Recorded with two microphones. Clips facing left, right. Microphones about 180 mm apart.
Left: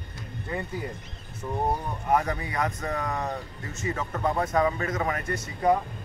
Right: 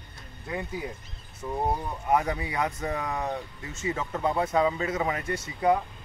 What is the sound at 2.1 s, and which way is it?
Speech, 10° right (ahead or behind).